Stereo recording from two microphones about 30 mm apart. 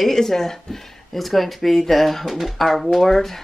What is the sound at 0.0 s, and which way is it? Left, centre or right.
Speech, centre.